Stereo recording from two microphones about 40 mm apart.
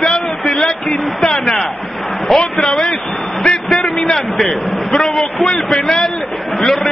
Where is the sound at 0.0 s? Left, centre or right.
Centre.